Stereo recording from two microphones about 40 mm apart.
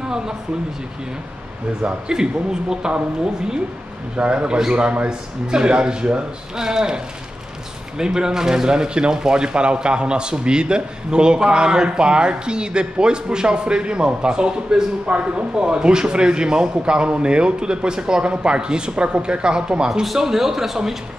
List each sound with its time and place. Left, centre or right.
1.8 s speech: centre
4.2 s speech: right
8.0 s speech: centre
15.0 s speech: right
15.5 s speech: right
19.9 s speech: centre